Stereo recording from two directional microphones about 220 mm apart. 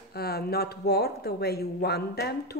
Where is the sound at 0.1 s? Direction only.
45° left (ahead or behind).